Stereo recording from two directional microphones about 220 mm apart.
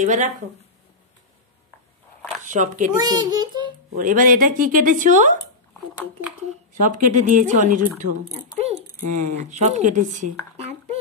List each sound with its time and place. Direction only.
0.0 s speech: 35° right (ahead or behind)
2.4 s speech: 35° right (ahead or behind)
3.0 s a child's voice: 20° right (ahead or behind)
4.0 s speech: 40° right (ahead or behind)
6.7 s speech: 35° right (ahead or behind)